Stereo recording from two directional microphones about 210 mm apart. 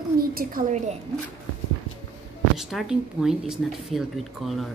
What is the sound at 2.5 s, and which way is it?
Speech, centre (ahead or behind).